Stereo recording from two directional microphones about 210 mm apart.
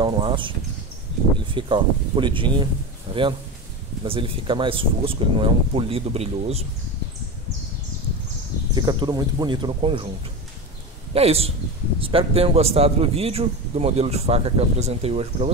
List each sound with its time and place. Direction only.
0.0 s a sound: 20° right (ahead or behind)
1.5 s a man's voice: 25° right (ahead or behind)
8.7 s a man's voice: 20° right (ahead or behind)
11.1 s a man's voice: 30° right (ahead or behind)